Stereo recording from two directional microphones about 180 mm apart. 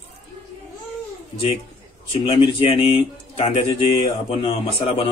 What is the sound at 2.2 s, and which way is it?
A man's voice, 30° left (ahead or behind).